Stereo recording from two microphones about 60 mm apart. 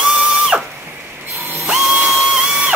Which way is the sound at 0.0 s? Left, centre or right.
Centre.